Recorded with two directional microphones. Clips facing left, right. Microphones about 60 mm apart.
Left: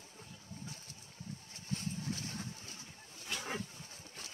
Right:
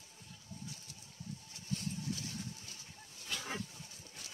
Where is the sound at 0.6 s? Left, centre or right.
Left.